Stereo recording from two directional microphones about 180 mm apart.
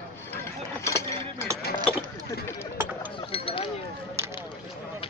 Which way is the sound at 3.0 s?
30° left (ahead or behind).